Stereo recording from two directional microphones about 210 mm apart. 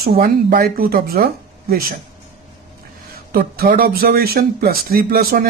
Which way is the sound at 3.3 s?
45° right (ahead or behind).